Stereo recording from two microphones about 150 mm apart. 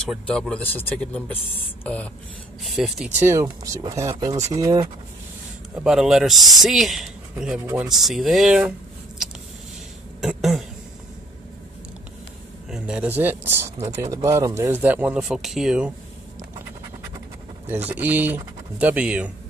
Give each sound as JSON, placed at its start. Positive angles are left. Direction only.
{"t": 0.0, "sound": "speech", "side_deg": 5}
{"t": 2.6, "sound": "speech", "side_deg": 0}
{"t": 5.9, "sound": "speech", "side_deg": -5}
{"t": 7.9, "sound": "speech", "side_deg": 0}
{"t": 10.2, "sound": "throat clearing", "side_deg": 0}
{"t": 12.6, "sound": "speech", "side_deg": -5}
{"t": 17.6, "sound": "speech", "side_deg": -10}